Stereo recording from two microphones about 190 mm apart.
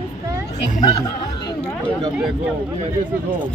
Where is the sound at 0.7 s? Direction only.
35° left (ahead or behind).